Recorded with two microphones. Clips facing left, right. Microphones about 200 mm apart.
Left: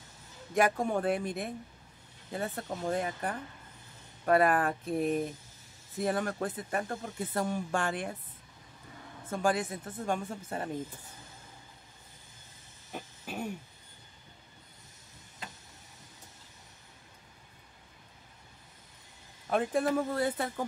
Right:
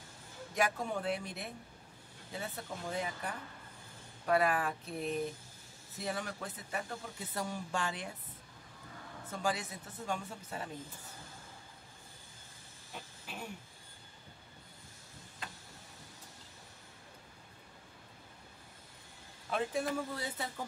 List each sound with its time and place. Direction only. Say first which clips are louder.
0.6 s speech: left 7 dB; 50° left (ahead or behind)
9.3 s speech: left 7 dB; 50° left (ahead or behind)
19.5 s a man's voice: left 6 dB; 50° left (ahead or behind)